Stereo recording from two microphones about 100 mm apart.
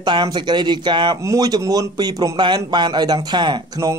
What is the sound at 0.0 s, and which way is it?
Speech, 50° right (ahead or behind).